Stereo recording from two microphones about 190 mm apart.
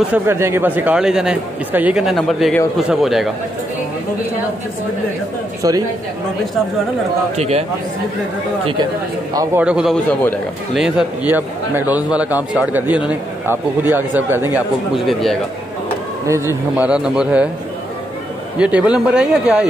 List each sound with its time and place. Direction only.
0.1 s a man's voice: 15° right (ahead or behind)
5.6 s speech: 20° right (ahead or behind)
7.3 s speech: 35° right (ahead or behind)
9.3 s speech: 15° right (ahead or behind)
15.0 s a man's voice: centre (ahead or behind)
16.3 s speech: 15° right (ahead or behind)
18.6 s a man's voice: 5° right (ahead or behind)